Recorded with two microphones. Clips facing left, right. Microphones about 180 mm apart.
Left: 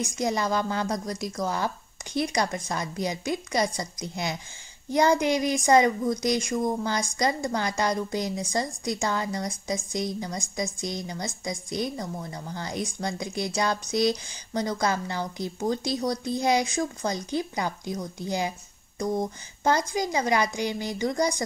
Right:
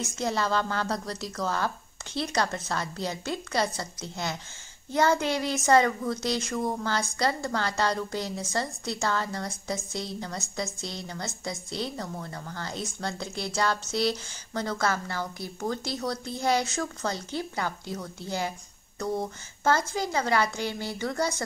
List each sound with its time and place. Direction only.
0.0 s a woman's voice: 15° left (ahead or behind)